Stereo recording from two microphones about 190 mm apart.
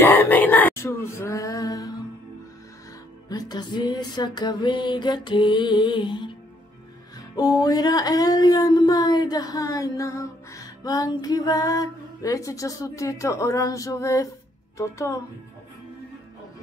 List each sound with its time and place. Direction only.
0.0 s a sound: 10° left (ahead or behind)
3.3 s speech: 20° left (ahead or behind)
7.6 s speech: 20° left (ahead or behind)